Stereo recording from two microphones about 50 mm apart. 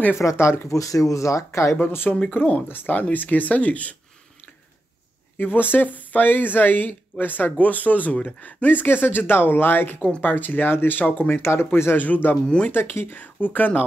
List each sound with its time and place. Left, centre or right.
0.2 s speech: left
1.8 s speech: left
2.1 s speech: left
2.7 s speech: left
5.4 s speech: left
9.9 s speech: left
10.2 s speech: left
11.4 s speech: left
12.0 s speech: left
12.4 s speech: left
12.7 s speech: left